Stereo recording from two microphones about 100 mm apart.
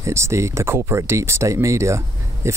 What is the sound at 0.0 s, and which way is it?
Speech, 30° right (ahead or behind).